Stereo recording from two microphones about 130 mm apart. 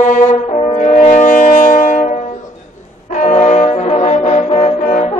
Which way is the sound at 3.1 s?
70° left (ahead or behind).